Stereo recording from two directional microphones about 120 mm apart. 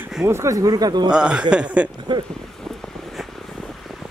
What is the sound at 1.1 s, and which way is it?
Speech, 5° right (ahead or behind).